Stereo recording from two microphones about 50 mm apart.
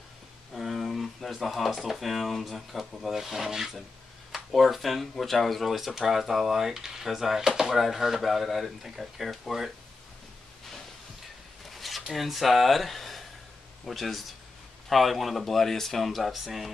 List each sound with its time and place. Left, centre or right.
0.6 s speech: centre
11.7 s a sound: centre
13.8 s speech: centre